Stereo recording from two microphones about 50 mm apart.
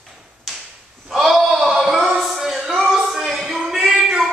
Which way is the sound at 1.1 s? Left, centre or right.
Centre.